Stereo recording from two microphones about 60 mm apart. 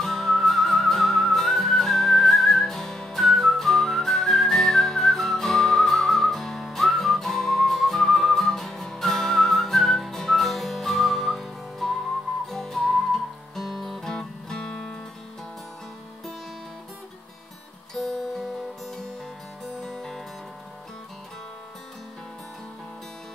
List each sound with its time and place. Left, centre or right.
0.0 s music: centre
17.9 s music: centre
19.6 s music: centre